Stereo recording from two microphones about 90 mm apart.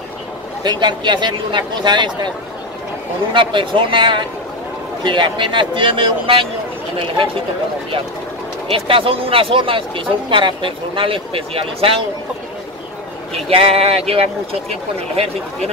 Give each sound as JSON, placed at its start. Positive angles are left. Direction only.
{"t": 0.7, "sound": "speech", "side_deg": -55}
{"t": 3.3, "sound": "speech", "side_deg": -65}
{"t": 8.7, "sound": "speech", "side_deg": -90}
{"t": 13.5, "sound": "speech", "side_deg": -90}